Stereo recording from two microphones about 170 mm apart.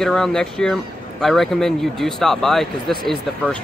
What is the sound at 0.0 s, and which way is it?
Speech, 5° left (ahead or behind).